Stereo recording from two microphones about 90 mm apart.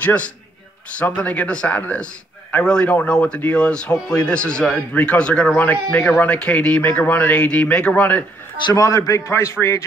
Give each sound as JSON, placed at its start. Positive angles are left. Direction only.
{"t": 0.0, "sound": "a man's voice", "side_deg": 15}
{"t": 8.6, "sound": "a man's voice", "side_deg": 40}